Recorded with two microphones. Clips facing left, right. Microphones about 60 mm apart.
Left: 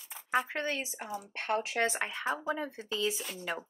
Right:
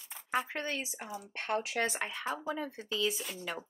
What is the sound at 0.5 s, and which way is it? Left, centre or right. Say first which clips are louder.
A woman's voice: left 2 dB; left.